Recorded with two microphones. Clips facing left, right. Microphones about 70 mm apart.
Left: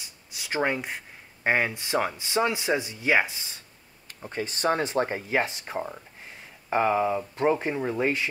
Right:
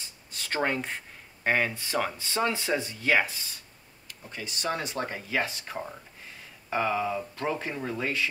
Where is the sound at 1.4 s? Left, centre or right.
Centre.